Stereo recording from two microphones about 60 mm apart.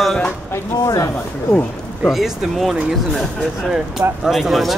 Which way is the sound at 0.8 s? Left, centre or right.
Left.